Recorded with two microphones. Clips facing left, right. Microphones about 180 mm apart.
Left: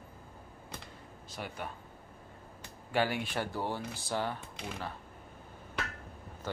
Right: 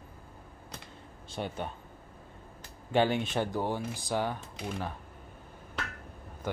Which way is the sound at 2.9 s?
25° right (ahead or behind).